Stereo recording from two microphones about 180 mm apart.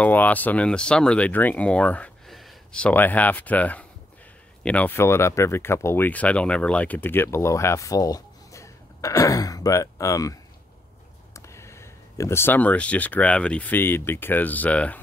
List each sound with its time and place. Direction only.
0.0 s speech: 10° left (ahead or behind)